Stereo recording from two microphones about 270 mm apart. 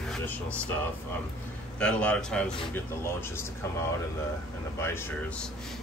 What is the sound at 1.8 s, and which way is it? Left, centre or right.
Speech, centre.